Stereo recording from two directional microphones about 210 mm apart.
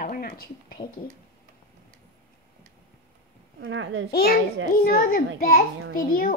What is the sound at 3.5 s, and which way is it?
Speech, 65° right (ahead or behind).